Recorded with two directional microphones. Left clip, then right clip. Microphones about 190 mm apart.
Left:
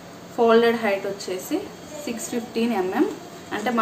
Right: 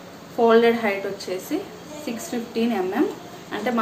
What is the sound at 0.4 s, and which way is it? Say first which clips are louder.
Speech: right 1 dB; centre (ahead or behind).